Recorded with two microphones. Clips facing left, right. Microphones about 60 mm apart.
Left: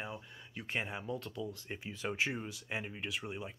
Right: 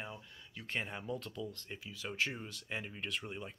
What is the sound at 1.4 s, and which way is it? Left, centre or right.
Speech, centre.